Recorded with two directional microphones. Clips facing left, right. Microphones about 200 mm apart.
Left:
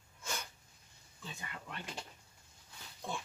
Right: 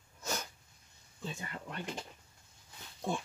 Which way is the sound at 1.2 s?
40° right (ahead or behind).